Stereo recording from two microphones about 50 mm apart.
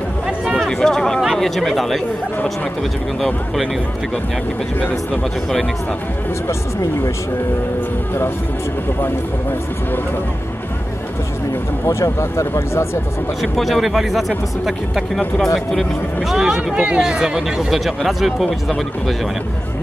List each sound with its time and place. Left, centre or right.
0.6 s a sound: centre
1.4 s speech: centre
4.7 s speech: left
11.8 s speech: left
13.4 s speech: centre
16.3 s speech: centre
16.7 s speech: right
17.0 s speech: centre